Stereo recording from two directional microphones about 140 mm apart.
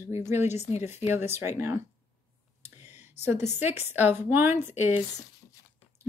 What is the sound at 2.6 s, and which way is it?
Clicking, 15° right (ahead or behind).